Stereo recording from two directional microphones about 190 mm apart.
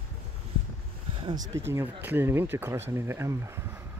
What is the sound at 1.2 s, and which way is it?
Speech, 20° right (ahead or behind).